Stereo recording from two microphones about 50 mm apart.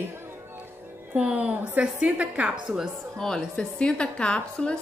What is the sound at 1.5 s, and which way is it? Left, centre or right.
Speech, right.